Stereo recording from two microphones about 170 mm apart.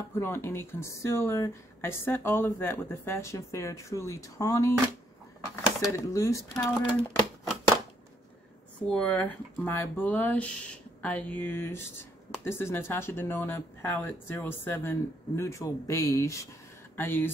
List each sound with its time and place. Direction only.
0.1 s speech: 15° left (ahead or behind)
5.9 s speech: 20° left (ahead or behind)
6.6 s a sound: centre (ahead or behind)
8.8 s speech: 5° left (ahead or behind)